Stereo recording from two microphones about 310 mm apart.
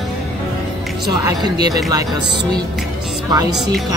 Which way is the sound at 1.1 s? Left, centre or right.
Centre.